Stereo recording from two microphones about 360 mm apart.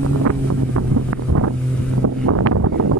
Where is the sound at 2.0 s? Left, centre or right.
Right.